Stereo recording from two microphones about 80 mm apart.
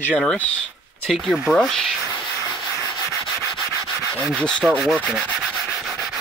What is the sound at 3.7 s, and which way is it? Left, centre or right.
Rub, right.